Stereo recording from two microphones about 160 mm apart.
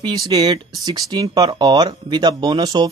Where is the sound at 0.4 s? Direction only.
25° right (ahead or behind).